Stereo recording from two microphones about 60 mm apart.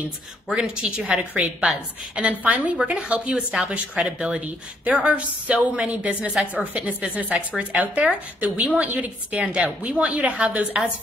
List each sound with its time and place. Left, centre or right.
0.5 s a woman's voice: centre